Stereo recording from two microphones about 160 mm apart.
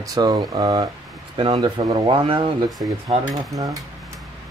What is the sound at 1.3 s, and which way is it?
Speech, 35° right (ahead or behind).